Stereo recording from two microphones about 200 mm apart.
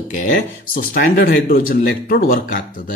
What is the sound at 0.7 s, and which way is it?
Speech, 45° left (ahead or behind).